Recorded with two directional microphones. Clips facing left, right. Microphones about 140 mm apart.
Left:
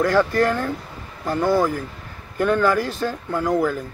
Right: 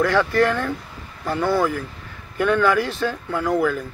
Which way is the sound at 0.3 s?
40° left (ahead or behind).